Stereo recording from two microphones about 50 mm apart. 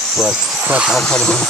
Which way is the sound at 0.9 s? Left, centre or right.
Centre.